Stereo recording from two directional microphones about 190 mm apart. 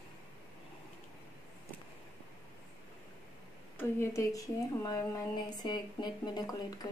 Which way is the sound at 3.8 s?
15° left (ahead or behind).